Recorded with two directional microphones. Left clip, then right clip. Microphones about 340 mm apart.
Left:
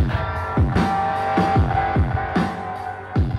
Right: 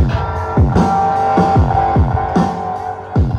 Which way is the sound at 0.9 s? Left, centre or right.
Right.